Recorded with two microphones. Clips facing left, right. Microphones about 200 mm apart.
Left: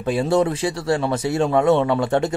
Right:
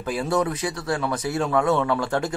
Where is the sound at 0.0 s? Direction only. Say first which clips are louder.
Left 5 dB; 25° left (ahead or behind).